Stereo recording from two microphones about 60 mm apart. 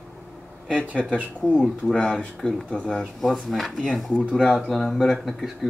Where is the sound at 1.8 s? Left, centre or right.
Centre.